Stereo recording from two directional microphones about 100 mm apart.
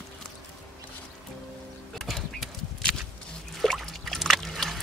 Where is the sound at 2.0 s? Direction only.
Centre (ahead or behind).